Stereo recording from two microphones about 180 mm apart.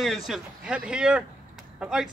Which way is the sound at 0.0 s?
Centre (ahead or behind).